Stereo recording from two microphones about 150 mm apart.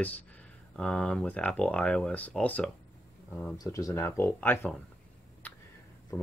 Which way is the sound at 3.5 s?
20° left (ahead or behind).